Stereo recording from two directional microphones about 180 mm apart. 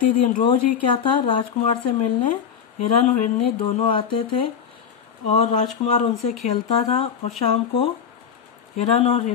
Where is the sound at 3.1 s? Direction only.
40° left (ahead or behind).